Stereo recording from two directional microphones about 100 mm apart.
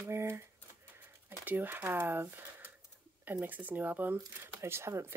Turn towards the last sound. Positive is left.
turn(degrees=-25)  # may be behind; listen again after turning